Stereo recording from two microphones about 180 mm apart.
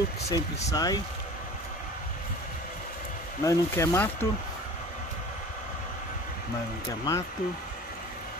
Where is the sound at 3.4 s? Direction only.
15° left (ahead or behind).